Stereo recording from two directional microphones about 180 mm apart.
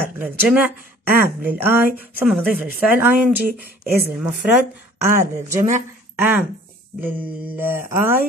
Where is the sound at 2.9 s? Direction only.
10° right (ahead or behind).